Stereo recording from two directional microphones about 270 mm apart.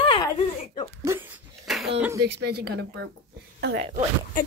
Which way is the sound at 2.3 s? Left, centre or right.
Right.